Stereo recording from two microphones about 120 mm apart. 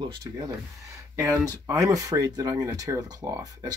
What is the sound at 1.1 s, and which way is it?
Speech, 20° right (ahead or behind).